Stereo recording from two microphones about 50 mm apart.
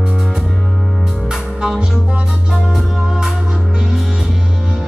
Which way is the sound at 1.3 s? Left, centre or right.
Centre.